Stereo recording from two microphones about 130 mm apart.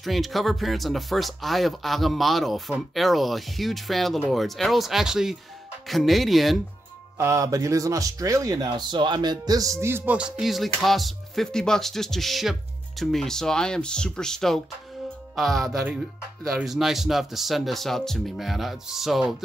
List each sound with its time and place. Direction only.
0.0 s speech: centre (ahead or behind)
7.2 s speech: 25° right (ahead or behind); by 19.3 s 5° right (ahead or behind)